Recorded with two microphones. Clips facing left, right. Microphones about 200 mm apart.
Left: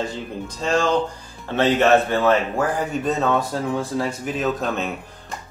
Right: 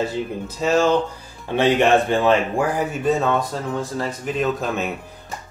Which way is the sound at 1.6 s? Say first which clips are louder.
Even; 15° right (ahead or behind).